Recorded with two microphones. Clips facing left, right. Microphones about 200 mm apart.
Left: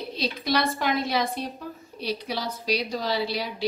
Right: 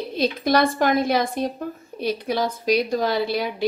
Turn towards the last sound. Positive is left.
turn(degrees=-50)  # may be behind; listen again after turning